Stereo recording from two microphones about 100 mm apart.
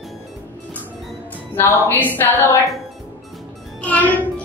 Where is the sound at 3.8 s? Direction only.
15° left (ahead or behind).